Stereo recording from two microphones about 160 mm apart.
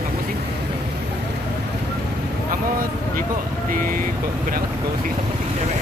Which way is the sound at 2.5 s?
65° right (ahead or behind).